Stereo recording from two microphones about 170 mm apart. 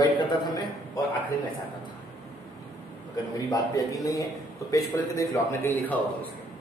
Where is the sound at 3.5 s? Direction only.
20° left (ahead or behind).